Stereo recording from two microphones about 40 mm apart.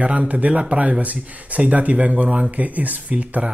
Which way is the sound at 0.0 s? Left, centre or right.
Right.